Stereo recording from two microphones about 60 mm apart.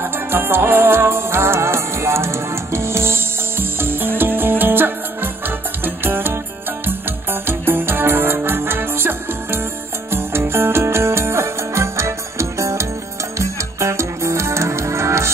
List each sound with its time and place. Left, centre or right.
0.0 s music: right